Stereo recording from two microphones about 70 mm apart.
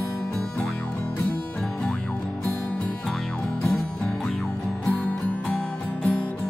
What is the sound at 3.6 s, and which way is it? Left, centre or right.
Music, centre.